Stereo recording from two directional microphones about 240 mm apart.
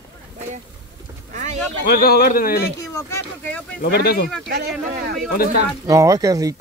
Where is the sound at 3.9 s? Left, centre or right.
Left.